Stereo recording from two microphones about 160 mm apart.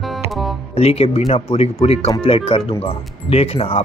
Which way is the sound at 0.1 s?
Centre (ahead or behind).